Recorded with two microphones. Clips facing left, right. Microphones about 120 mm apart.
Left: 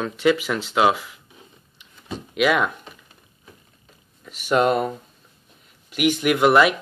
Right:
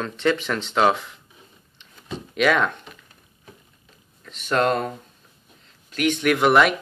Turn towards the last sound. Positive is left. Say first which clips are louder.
# left 1 dB
turn(degrees=0)  # may be behind; listen again after turning